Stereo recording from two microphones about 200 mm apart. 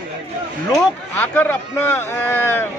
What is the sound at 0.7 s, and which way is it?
A man's voice, 10° left (ahead or behind).